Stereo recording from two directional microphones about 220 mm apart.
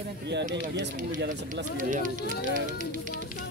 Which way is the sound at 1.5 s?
35° right (ahead or behind).